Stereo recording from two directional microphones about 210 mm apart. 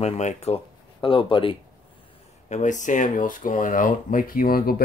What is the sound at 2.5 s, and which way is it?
Speech, 35° left (ahead or behind).